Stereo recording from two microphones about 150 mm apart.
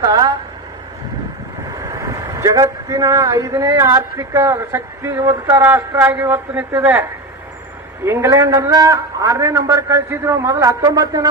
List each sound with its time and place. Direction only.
0.0 s a sound: 25° right (ahead or behind)
1.8 s speech: 20° right (ahead or behind)
8.0 s a man's voice: 15° right (ahead or behind)